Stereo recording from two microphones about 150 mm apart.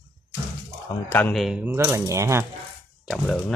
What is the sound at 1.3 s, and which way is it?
Speech, 5° right (ahead or behind).